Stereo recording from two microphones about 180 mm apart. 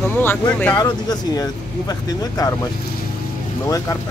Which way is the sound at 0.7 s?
20° left (ahead or behind).